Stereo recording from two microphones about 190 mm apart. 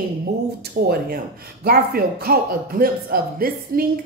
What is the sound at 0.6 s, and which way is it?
Speech, 55° right (ahead or behind).